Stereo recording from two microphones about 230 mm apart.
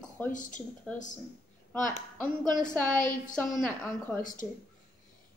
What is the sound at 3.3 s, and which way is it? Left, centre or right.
Speech, centre.